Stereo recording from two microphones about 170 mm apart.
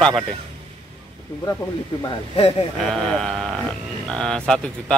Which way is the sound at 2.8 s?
5° left (ahead or behind).